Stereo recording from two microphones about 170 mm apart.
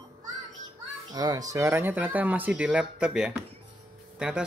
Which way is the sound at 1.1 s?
20° right (ahead or behind).